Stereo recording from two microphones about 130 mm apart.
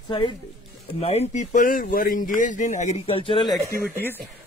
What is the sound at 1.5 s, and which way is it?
Speech, 90° left.